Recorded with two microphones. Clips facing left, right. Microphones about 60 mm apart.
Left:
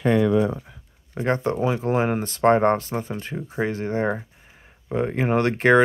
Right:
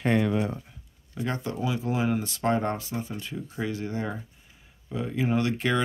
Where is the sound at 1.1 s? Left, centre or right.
Left.